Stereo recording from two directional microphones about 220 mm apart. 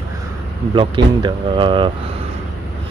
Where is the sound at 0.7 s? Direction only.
20° right (ahead or behind).